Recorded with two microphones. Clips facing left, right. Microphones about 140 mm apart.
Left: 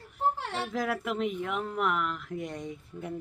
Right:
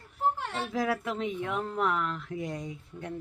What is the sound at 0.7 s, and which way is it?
Speech, centre (ahead or behind).